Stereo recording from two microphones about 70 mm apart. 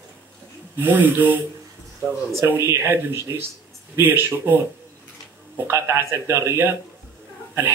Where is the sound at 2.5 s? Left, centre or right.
Right.